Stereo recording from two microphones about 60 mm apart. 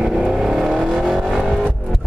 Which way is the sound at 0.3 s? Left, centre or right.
Centre.